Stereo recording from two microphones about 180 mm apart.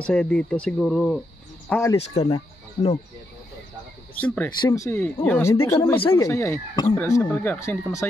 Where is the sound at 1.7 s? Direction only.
15° left (ahead or behind).